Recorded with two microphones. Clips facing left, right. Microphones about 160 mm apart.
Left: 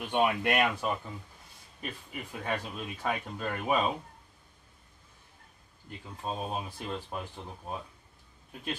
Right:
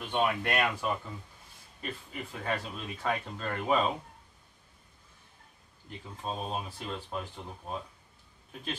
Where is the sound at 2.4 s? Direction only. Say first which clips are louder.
Even; 10° left (ahead or behind).